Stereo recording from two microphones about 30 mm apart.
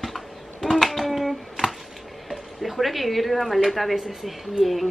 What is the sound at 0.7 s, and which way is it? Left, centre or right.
Hands, centre.